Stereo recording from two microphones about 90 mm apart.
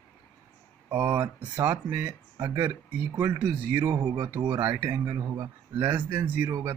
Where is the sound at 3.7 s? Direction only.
20° right (ahead or behind).